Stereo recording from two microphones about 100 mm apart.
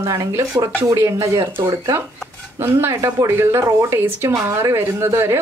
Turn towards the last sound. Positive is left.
turn(degrees=-25)  # may be behind; listen again after turning